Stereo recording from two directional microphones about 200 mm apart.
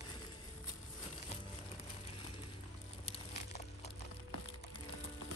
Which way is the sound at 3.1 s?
35° left (ahead or behind).